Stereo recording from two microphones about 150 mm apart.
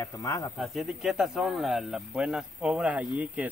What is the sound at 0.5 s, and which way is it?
Speech, centre (ahead or behind).